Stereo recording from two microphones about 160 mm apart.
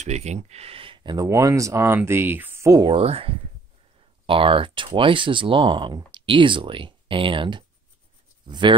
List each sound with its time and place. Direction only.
0.0 s speech: 45° right (ahead or behind); by 2.9 s 20° right (ahead or behind)
2.9 s speech: 35° right (ahead or behind)